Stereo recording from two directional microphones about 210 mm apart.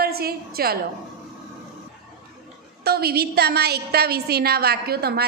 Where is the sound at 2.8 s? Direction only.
50° right (ahead or behind).